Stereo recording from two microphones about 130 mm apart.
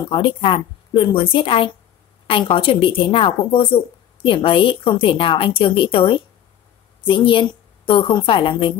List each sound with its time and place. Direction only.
0.1 s a woman's voice: 45° left (ahead or behind)